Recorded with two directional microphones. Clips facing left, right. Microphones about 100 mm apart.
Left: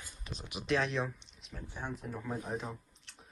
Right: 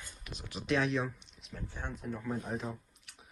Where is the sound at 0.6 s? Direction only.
Centre (ahead or behind).